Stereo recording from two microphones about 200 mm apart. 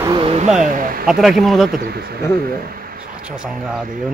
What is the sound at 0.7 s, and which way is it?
Speech, 45° right (ahead or behind).